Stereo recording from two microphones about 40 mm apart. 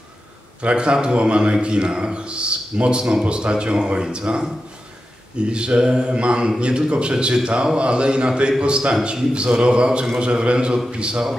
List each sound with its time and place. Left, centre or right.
0.6 s a man's voice: right
5.5 s a man's voice: right